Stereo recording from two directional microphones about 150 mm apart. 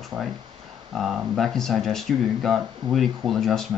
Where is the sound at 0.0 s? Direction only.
Centre (ahead or behind).